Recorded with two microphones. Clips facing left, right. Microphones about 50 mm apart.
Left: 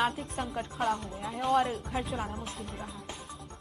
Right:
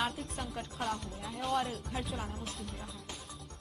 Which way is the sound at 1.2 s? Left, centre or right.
Centre.